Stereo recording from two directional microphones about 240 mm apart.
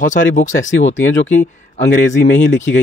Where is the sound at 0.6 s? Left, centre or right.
Left.